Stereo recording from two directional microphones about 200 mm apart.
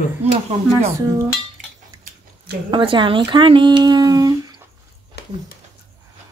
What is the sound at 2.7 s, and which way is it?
Speech, 25° right (ahead or behind).